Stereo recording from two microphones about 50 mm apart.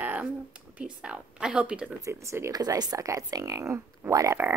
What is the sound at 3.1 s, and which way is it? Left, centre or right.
Speech, right.